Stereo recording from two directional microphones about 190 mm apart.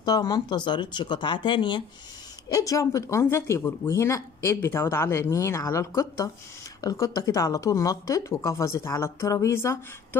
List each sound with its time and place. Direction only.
0.0 s speech: 20° left (ahead or behind)